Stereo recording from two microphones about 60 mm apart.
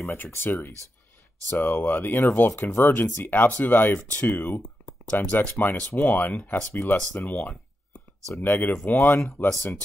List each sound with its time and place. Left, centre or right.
0.0 s speech: left